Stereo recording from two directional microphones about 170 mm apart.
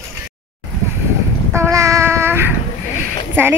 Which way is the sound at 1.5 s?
15° right (ahead or behind).